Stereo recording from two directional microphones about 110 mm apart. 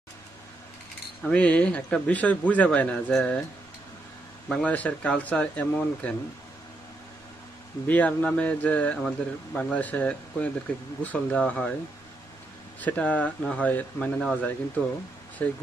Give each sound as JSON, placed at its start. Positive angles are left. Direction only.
{"t": 1.2, "sound": "a man's voice", "side_deg": 10}
{"t": 4.5, "sound": "a man's voice", "side_deg": 10}
{"t": 7.8, "sound": "a man's voice", "side_deg": 15}
{"t": 12.8, "sound": "a man's voice", "side_deg": 15}